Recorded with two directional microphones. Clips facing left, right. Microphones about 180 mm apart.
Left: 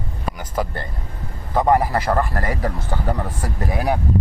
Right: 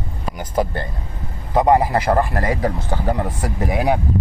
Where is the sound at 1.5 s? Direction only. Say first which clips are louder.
Right 2 dB; 20° right (ahead or behind).